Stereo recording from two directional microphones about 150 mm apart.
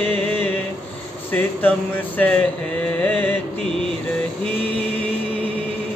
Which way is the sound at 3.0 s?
10° left (ahead or behind).